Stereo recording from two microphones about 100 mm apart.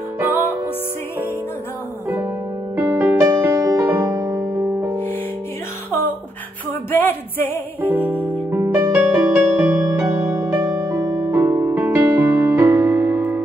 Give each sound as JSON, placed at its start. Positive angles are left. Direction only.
{"t": 0.2, "sound": "music", "side_deg": -20}
{"t": 2.0, "sound": "music", "side_deg": -20}
{"t": 4.1, "sound": "music", "side_deg": -30}
{"t": 6.9, "sound": "a sound", "side_deg": 20}
{"t": 7.8, "sound": "music", "side_deg": -15}
{"t": 10.8, "sound": "music", "side_deg": -35}
{"t": 11.2, "sound": "music", "side_deg": -25}
{"t": 12.4, "sound": "music", "side_deg": -35}